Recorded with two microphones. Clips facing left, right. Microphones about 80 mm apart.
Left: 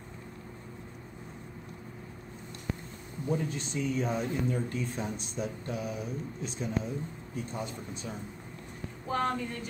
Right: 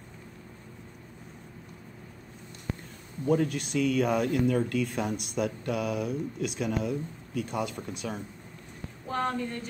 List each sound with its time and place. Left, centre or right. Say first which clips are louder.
3.3 s speech: right 6 dB; right
9.1 s speech: right 1 dB; centre